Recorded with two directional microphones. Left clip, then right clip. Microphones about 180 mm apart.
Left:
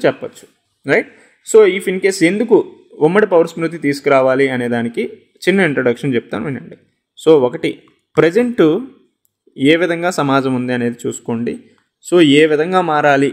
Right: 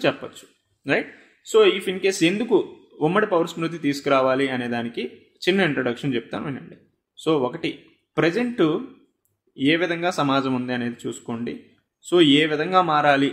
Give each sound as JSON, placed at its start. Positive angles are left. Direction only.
{"t": 0.0, "sound": "a man's voice", "side_deg": 35}